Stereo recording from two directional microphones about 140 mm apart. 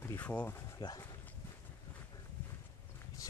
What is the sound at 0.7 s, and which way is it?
Speech, 25° left (ahead or behind).